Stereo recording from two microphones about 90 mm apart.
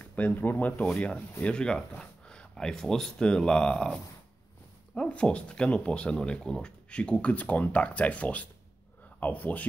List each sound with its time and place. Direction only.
0.0 s speech: 20° left (ahead or behind)